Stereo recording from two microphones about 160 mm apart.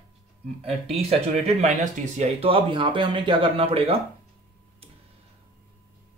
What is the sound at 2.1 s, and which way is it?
Speech, 40° right (ahead or behind).